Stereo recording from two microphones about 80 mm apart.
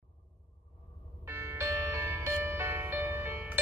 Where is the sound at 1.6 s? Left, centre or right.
Right.